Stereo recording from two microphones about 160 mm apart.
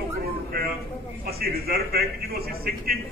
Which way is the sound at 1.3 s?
75° right (ahead or behind).